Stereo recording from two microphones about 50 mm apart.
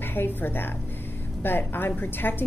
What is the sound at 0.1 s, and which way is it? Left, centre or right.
A woman's voice, left.